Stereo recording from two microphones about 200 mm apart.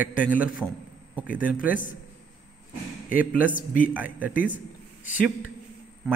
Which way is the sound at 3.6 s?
45° left (ahead or behind).